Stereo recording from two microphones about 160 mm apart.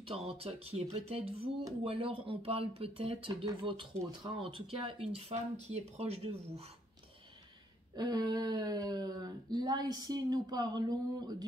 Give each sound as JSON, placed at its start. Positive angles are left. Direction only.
{"t": 0.4, "sound": "speech", "side_deg": -40}
{"t": 7.9, "sound": "speech", "side_deg": -25}